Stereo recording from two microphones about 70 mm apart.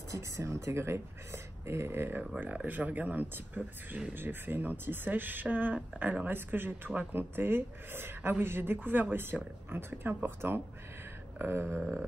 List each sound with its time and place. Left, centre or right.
0.1 s speech: right